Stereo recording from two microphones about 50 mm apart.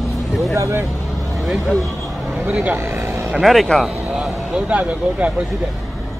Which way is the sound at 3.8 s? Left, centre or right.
Centre.